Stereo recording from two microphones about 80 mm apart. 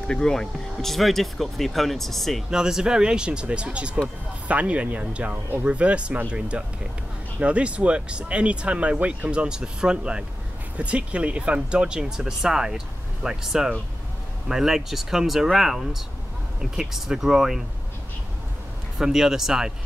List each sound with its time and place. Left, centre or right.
0.1 s speech: centre
2.5 s speech: centre
7.3 s speech: centre
18.9 s speech: centre